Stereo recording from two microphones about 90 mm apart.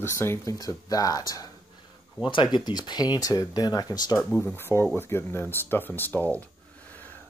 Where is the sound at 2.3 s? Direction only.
60° left (ahead or behind).